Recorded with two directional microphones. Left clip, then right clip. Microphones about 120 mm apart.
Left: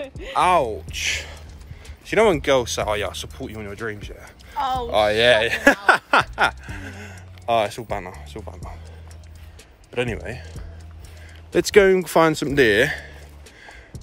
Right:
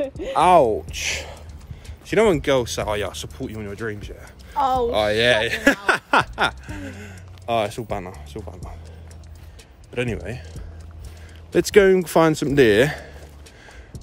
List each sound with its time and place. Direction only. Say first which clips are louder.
0.3 s speech: right 3 dB; 35° right (ahead or behind)
1.0 s speech: left 5 dB; 50° right (ahead or behind)
2.0 s speech: left 1 dB; 10° right (ahead or behind)
4.6 s speech: right 4 dB; 55° right (ahead or behind)
4.8 s speech: left 2 dB; centre (ahead or behind)
6.0 s speech: left 1 dB; 20° right (ahead or behind)
6.6 s speech: even; 10° right (ahead or behind)
7.6 s speech: left 1 dB; 20° right (ahead or behind)
8.4 s speech: right 1 dB; centre (ahead or behind)
9.9 s speech: left 1 dB; 5° right (ahead or behind)
11.5 s speech: even; 15° right (ahead or behind); by 13.2 s 40° right (ahead or behind)